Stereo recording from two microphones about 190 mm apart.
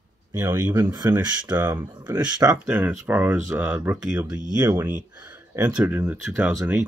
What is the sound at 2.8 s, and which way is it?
Speech, 5° right (ahead or behind).